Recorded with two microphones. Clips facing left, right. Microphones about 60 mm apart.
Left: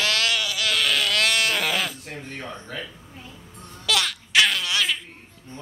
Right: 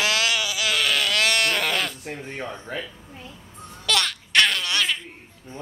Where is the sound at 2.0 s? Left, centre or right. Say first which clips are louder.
Right 3 dB; centre.